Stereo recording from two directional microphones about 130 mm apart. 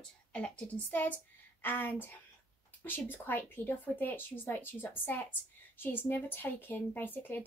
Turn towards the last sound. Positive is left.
turn(degrees=15)  # may be behind; listen again after turning